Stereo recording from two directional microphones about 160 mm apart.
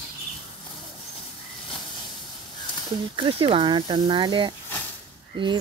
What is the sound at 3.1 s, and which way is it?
Speech, 30° right (ahead or behind).